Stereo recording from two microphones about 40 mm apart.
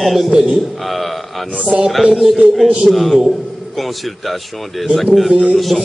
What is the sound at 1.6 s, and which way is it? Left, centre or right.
Speech, right.